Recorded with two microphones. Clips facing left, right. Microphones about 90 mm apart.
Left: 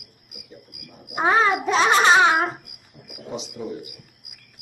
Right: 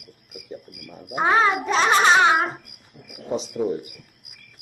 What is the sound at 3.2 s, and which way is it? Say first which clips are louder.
Speech: right 7 dB; 40° right (ahead or behind).